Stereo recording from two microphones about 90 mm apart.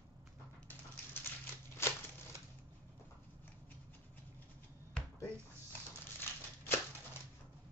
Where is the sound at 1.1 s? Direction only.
25° left (ahead or behind).